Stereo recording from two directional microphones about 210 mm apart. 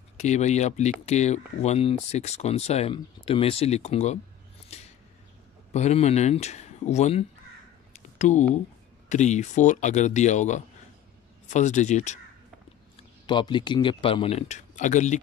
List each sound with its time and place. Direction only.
0.2 s speech: 35° left (ahead or behind)
4.7 s a sound: 30° left (ahead or behind)
5.7 s speech: 30° left (ahead or behind)
7.9 s a sound: 35° left (ahead or behind)
9.1 s speech: 35° left (ahead or behind)
12.9 s speech: 20° left (ahead or behind)